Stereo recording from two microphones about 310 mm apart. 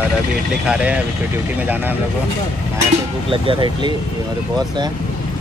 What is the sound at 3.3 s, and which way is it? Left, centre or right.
Speech, centre.